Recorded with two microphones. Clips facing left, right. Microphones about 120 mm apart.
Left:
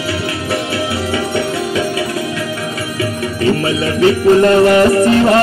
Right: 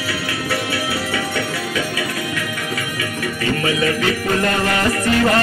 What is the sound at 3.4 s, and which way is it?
Music, 30° left (ahead or behind).